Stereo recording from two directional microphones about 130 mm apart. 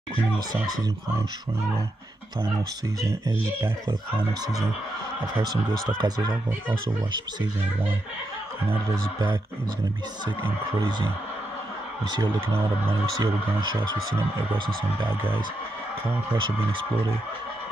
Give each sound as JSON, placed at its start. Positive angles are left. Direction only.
{"t": 0.7, "sound": "speech", "side_deg": -30}
{"t": 3.0, "sound": "speech", "side_deg": -25}
{"t": 5.9, "sound": "speech", "side_deg": -30}
{"t": 10.4, "sound": "speech", "side_deg": -40}
{"t": 13.2, "sound": "speech", "side_deg": -35}